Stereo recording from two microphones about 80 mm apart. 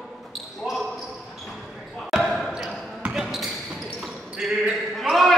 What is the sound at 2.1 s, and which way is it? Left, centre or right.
Basketball bounce, centre.